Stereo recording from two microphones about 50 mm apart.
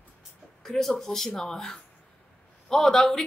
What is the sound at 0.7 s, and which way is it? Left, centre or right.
A woman's voice, centre.